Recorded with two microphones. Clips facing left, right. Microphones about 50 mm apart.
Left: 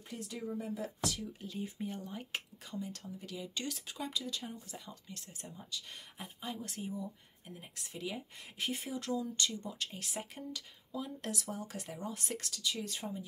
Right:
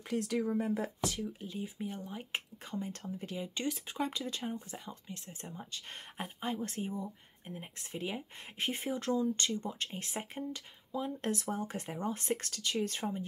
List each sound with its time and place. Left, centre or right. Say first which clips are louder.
0.1 s speech: right 9 dB; right
0.6 s speech: right 5 dB; right
1.2 s speech: right 3 dB; centre
1.6 s speech: even; centre
2.3 s speech: right 4 dB; right